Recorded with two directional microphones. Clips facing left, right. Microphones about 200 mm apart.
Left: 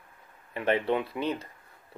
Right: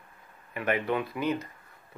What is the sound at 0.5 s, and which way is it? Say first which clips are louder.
Speech: left 2 dB; 30° left (ahead or behind).